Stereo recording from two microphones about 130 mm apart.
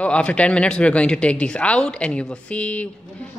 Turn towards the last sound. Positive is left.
turn(degrees=10)  # may be behind; listen again after turning